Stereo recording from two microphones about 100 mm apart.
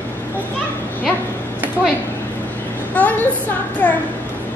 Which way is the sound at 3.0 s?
15° left (ahead or behind).